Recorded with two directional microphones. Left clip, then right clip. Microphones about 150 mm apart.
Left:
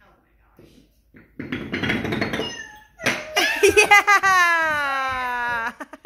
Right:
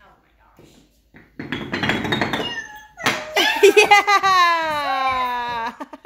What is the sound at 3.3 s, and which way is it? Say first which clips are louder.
Baby laughter: right 3 dB; 25° right (ahead or behind).